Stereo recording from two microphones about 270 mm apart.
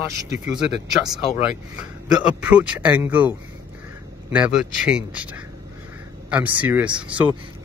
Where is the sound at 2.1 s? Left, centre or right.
Centre.